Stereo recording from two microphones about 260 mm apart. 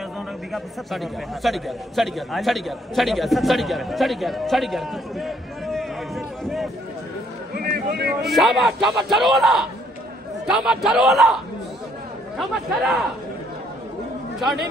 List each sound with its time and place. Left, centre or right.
0.5 s a man's voice: centre
7.5 s a sound: right
8.2 s a man's voice: centre
12.4 s a man's voice: centre